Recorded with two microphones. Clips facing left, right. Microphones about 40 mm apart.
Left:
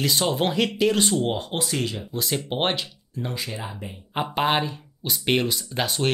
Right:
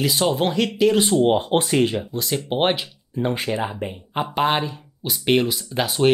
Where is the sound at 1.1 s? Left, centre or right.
Right.